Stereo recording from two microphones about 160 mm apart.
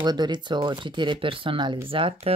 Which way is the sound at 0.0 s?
25° right (ahead or behind).